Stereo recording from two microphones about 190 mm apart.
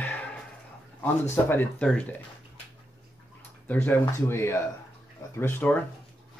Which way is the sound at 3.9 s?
10° left (ahead or behind).